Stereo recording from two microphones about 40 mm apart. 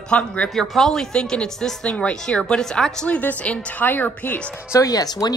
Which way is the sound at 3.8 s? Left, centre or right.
Left.